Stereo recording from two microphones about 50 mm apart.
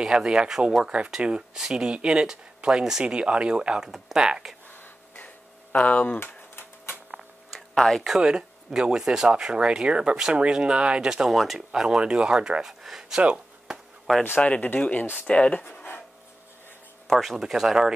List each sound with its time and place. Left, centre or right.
0.0 s speech: centre
4.6 s a sound: left
6.2 s typewriter: left
7.2 s a sound: centre
8.2 s speech: centre
12.6 s speech: centre
13.2 s a sound: right
14.4 s speech: left
17.1 s speech: centre